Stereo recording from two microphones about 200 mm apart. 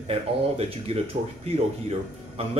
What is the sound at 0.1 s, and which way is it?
Speech, 30° right (ahead or behind).